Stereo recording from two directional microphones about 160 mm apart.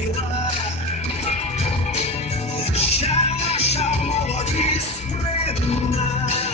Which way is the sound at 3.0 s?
40° left (ahead or behind).